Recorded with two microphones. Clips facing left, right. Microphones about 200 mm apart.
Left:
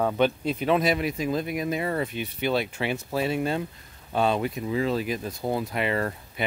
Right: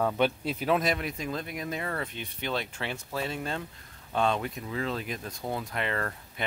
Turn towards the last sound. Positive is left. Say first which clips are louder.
# left 6 dB
turn(degrees=10)  # may be behind; listen again after turning